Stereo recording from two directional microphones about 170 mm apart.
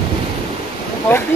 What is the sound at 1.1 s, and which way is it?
Speech, 15° left (ahead or behind).